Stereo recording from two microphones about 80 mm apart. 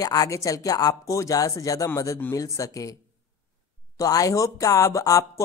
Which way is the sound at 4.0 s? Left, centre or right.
Left.